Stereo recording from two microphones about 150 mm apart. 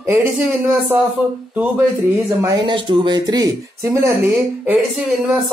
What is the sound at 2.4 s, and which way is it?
Speech, 30° right (ahead or behind).